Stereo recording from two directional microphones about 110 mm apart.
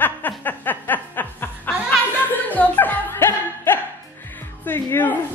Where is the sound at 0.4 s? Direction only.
15° left (ahead or behind).